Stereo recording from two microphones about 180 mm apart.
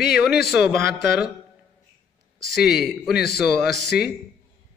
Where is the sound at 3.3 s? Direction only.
60° left (ahead or behind).